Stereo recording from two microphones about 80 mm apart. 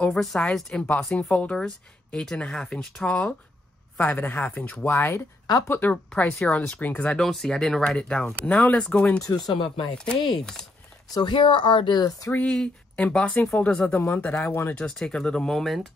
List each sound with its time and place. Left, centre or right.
0.1 s speech: centre
9.2 s speech: left
9.6 s speech: left
11.1 s speech: left
12.4 s speech: centre
14.8 s speech: centre